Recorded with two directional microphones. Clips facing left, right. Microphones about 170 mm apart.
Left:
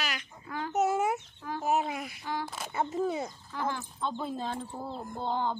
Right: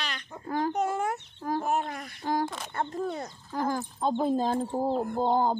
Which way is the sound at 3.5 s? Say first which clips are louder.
Right 8 dB; 40° right (ahead or behind).